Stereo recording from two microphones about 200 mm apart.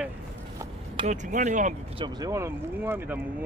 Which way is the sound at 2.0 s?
20° right (ahead or behind).